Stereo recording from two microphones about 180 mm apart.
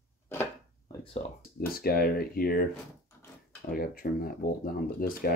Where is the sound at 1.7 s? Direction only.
55° left (ahead or behind).